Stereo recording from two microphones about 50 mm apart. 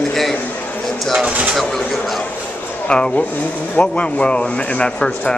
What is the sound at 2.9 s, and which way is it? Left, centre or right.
Speech, centre.